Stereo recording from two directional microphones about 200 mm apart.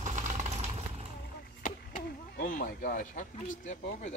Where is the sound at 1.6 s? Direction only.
45° left (ahead or behind).